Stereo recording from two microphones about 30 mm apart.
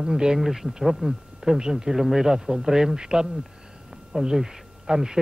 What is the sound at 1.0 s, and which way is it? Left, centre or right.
Speech, right.